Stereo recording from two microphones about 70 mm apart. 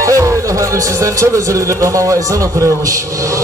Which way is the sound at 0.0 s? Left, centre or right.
Right.